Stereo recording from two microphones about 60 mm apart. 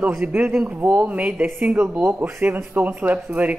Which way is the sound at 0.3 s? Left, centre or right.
Right.